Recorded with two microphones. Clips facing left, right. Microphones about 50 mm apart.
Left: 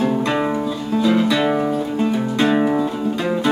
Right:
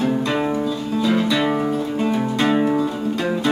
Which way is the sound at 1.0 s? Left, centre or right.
Centre.